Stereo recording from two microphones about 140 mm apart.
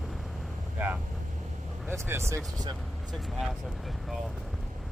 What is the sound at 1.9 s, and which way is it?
Speech, 20° right (ahead or behind).